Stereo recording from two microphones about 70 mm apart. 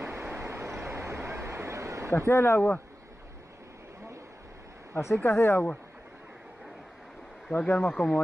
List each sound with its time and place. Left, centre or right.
0.0 s vehicle: right
2.1 s speech: left
4.9 s speech: left
7.5 s speech: centre